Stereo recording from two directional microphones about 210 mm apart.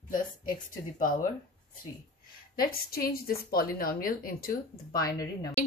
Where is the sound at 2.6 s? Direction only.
45° left (ahead or behind).